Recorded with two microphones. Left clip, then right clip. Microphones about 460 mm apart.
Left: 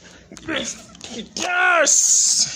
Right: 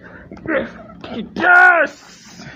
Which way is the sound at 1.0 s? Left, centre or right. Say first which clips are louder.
Right 8 dB; right.